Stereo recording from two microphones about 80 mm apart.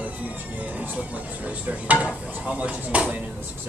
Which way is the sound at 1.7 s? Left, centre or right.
Centre.